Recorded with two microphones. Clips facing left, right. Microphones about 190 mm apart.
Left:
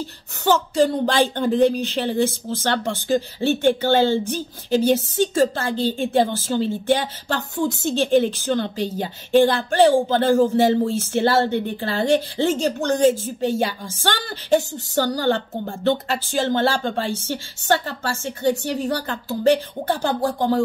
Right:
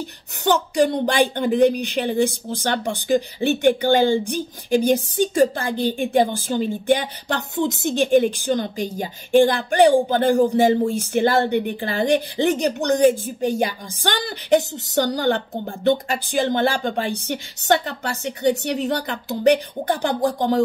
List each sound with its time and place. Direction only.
0.5 s speech: 15° right (ahead or behind)